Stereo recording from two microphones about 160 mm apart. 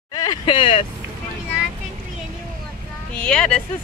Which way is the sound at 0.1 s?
25° left (ahead or behind).